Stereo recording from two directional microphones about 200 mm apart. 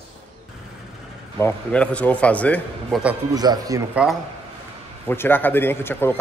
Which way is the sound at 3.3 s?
20° right (ahead or behind).